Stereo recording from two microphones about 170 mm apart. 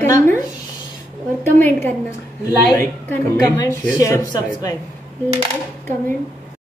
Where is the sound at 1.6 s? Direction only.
15° left (ahead or behind).